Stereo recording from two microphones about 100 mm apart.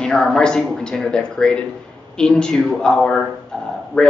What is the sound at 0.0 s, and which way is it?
A man's voice, 5° left (ahead or behind).